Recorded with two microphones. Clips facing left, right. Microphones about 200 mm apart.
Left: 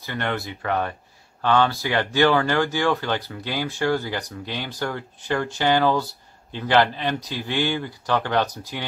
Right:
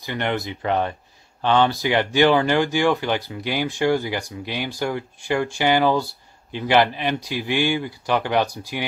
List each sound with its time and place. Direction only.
0.0 s speech: 20° right (ahead or behind)